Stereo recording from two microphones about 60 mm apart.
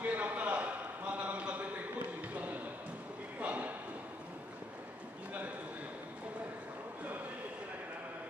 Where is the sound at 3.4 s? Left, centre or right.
Right.